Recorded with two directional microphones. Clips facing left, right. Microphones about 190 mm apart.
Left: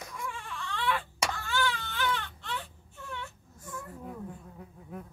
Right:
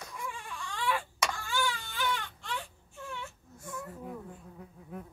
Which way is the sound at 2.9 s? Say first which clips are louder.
Even; 10° right (ahead or behind).